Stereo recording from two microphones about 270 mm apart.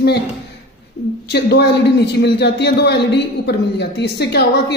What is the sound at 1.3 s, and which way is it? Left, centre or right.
Speech, left.